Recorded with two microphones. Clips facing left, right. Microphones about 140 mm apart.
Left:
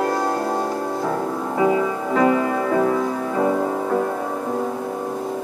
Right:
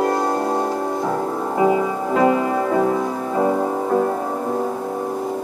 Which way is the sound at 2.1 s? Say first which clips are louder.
Right 1 dB; 25° right (ahead or behind).